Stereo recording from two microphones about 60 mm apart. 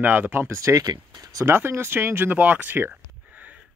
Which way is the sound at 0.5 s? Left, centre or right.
Right.